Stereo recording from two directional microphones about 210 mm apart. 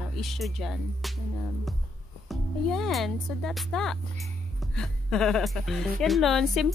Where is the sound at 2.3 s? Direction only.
Centre (ahead or behind).